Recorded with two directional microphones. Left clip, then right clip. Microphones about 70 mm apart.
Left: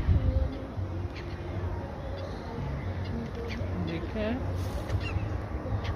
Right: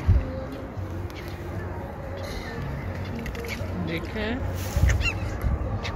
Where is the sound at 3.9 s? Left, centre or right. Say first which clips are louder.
Right 3 dB; left.